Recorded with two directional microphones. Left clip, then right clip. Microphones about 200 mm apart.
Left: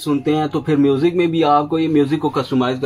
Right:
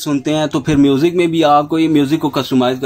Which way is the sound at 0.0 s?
50° right (ahead or behind).